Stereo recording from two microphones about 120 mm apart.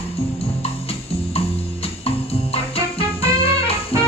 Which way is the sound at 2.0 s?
55° left (ahead or behind).